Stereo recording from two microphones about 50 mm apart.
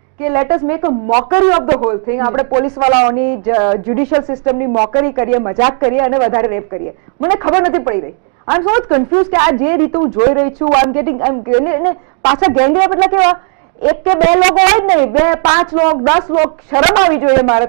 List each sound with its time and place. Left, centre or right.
0.2 s speech: centre
6.3 s a woman's voice: centre